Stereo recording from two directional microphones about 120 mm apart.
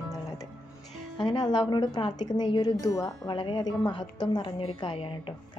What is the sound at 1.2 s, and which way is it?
A woman's voice, 40° left (ahead or behind).